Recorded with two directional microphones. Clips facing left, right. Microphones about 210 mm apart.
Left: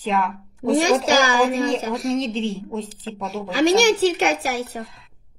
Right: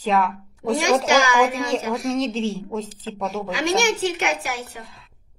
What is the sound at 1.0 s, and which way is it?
A woman's voice, 35° left (ahead or behind).